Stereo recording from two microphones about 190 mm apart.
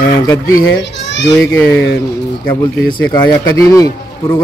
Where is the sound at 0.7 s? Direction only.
70° left (ahead or behind).